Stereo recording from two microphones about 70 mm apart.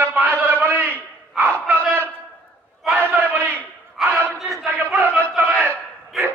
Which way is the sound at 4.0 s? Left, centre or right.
Centre.